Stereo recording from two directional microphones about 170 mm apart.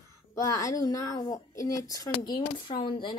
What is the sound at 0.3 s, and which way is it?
Speech, 20° left (ahead or behind).